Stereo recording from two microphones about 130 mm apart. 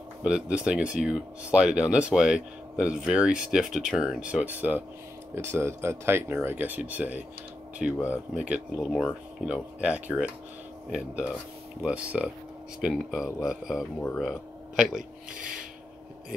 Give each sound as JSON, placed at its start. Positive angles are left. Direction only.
{"t": 0.2, "sound": "speech", "side_deg": -10}
{"t": 15.3, "sound": "filing", "side_deg": -90}